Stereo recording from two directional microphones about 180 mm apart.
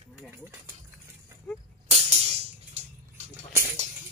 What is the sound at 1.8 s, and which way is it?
Music, 35° right (ahead or behind).